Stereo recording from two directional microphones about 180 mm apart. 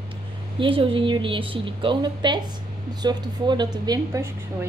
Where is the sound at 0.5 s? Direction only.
30° right (ahead or behind).